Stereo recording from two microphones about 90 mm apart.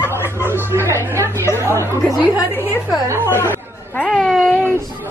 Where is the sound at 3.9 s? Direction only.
5° left (ahead or behind).